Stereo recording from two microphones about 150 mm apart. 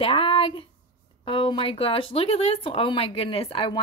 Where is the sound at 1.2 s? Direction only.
35° left (ahead or behind).